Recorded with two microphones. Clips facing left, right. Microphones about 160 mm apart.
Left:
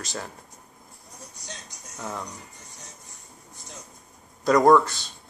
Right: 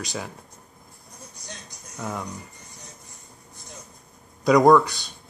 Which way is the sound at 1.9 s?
Centre (ahead or behind).